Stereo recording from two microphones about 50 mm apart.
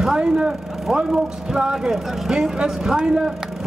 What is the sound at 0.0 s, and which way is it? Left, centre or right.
A man's voice, centre.